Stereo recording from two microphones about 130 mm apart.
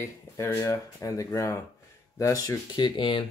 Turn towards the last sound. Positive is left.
turn(degrees=40)  # may be behind; listen again after turning